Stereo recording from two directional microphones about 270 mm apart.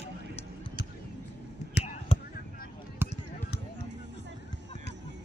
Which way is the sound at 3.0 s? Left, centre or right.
Centre.